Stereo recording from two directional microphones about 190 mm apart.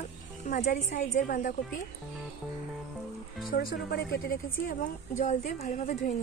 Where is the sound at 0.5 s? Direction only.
40° left (ahead or behind).